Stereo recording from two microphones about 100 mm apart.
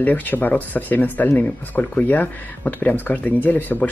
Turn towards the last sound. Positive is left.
turn(degrees=20)  # may be behind; listen again after turning